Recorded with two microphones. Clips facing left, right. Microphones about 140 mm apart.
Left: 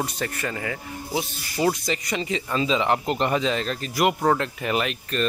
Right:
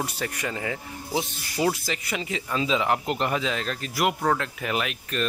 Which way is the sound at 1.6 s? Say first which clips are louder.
Left 2 dB; 5° right (ahead or behind).